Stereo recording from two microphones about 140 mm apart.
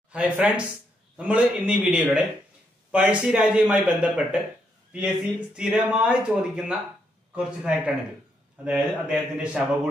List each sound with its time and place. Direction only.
0.1 s speech: 10° right (ahead or behind)